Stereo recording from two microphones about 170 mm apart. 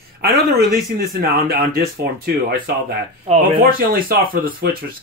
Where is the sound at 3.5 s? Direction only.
55° right (ahead or behind).